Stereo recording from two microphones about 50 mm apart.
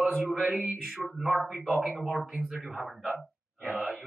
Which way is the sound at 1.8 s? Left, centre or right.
Centre.